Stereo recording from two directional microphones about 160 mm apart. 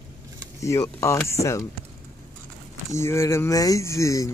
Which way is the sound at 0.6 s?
20° left (ahead or behind).